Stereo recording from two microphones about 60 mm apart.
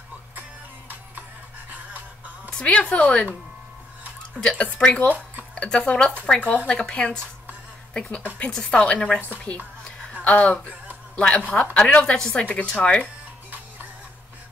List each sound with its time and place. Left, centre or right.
0.4 s music: right
2.6 s speech: left
4.4 s a woman's voice: centre
8.4 s a woman's voice: centre
10.2 s speech: left